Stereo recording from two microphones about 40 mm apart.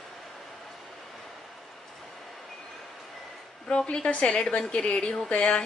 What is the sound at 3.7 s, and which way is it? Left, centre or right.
A woman's voice, left.